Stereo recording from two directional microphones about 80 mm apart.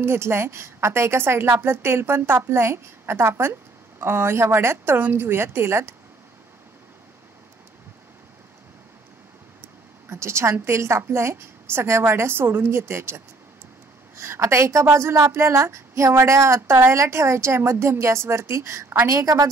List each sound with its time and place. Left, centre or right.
0.0 s a woman's voice: right
10.0 s a woman's voice: right